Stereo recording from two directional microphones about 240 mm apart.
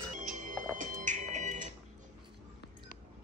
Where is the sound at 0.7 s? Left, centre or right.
Right.